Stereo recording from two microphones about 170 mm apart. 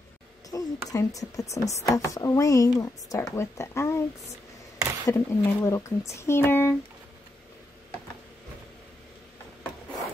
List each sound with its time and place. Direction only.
0.5 s speech: 20° left (ahead or behind)
5.0 s speech: 15° left (ahead or behind)